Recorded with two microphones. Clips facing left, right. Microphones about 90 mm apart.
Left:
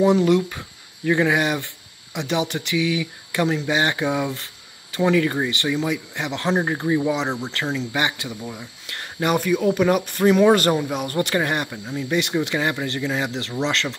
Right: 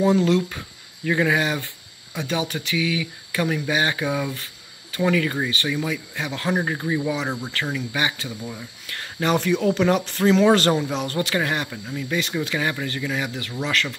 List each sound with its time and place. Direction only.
0.0 s speech: 15° left (ahead or behind)